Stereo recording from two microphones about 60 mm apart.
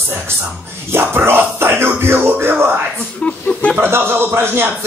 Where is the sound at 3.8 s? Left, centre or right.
Right.